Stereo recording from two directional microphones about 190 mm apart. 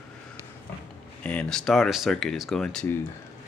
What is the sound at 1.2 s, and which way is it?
Speech, 5° left (ahead or behind).